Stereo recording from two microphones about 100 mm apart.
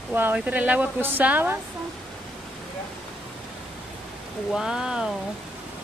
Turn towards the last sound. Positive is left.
turn(degrees=-5)  # may be behind; listen again after turning